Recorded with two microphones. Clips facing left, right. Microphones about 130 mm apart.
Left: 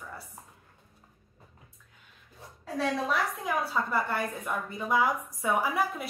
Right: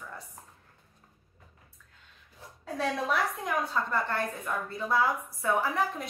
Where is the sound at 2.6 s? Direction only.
Centre (ahead or behind).